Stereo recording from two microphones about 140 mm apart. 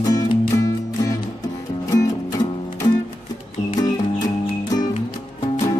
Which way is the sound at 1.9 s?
25° left (ahead or behind).